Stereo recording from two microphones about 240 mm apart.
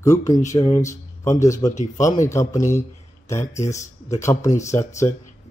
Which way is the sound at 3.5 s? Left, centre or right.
Left.